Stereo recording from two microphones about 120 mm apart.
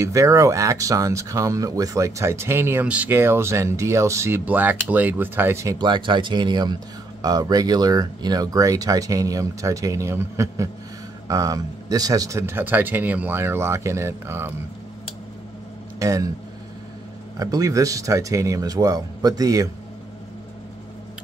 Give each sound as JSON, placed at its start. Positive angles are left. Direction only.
{"t": 0.0, "sound": "speech", "side_deg": -25}
{"t": 5.8, "sound": "speech", "side_deg": -40}
{"t": 16.0, "sound": "speech", "side_deg": -25}
{"t": 17.4, "sound": "speech", "side_deg": -30}